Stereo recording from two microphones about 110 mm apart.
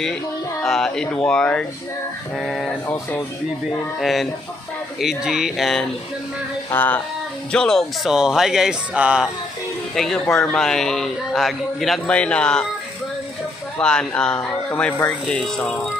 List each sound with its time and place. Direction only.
0.7 s a man's voice: 5° left (ahead or behind)
2.9 s speech: 25° left (ahead or behind)
4.0 s a man's voice: centre (ahead or behind)
6.7 s speech: 15° left (ahead or behind)
7.5 s a man's voice: 5° left (ahead or behind)
9.9 s a man's voice: 5° left (ahead or behind)
13.7 s speech: 10° left (ahead or behind)